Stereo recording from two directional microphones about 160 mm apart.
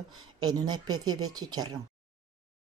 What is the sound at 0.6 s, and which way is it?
Speech, 25° right (ahead or behind).